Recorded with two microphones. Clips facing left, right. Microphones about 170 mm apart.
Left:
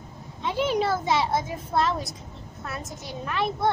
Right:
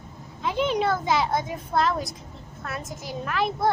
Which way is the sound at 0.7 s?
30° left (ahead or behind).